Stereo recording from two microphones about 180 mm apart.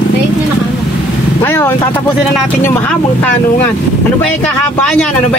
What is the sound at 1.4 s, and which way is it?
Speech, 10° left (ahead or behind).